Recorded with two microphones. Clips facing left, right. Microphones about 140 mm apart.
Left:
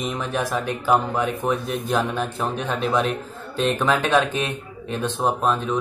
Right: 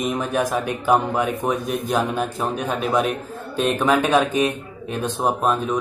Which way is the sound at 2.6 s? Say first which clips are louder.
Right 1 dB; 10° right (ahead or behind).